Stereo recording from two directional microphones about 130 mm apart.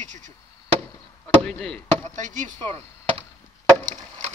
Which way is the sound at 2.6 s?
15° left (ahead or behind).